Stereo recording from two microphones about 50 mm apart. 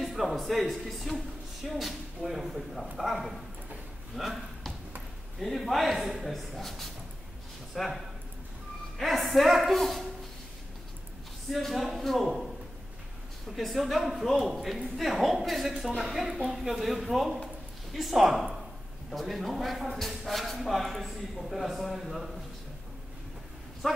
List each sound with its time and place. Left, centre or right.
0.0 s a man's voice: centre
4.2 s a sound: centre
5.4 s speech: centre
11.5 s speech: centre
13.5 s speech: centre